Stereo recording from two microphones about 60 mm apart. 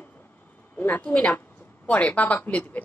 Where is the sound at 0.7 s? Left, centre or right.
Left.